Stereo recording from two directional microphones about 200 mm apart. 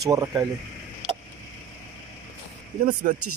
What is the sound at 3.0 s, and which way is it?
Speech, 40° right (ahead or behind).